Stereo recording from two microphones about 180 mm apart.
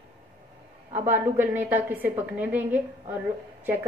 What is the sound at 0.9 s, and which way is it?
A woman's voice, 10° right (ahead or behind).